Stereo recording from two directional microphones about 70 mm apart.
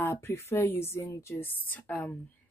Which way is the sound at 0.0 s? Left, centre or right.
Left.